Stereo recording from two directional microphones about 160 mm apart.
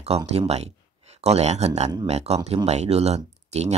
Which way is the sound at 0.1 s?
40° right (ahead or behind).